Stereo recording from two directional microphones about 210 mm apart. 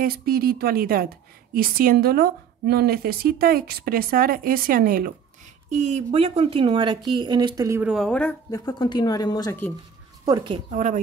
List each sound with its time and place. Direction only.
0.0 s a woman's voice: 45° right (ahead or behind); by 7.9 s 15° right (ahead or behind)
7.9 s speech: 5° left (ahead or behind)
10.2 s speech: 20° right (ahead or behind)
10.7 s speech: 35° right (ahead or behind)